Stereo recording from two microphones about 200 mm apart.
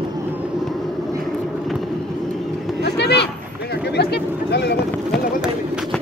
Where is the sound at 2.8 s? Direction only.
55° left (ahead or behind).